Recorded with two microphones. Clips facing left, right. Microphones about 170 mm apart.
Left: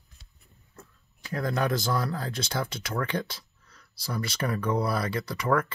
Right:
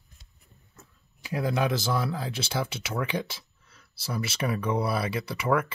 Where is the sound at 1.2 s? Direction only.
10° right (ahead or behind).